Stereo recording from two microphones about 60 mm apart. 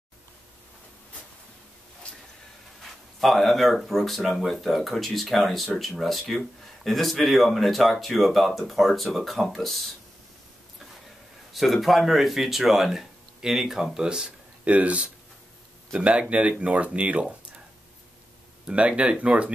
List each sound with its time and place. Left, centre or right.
2.8 s speech: centre
11.5 s speech: centre
13.9 s a sound: centre
14.7 s speech: right
18.7 s speech: centre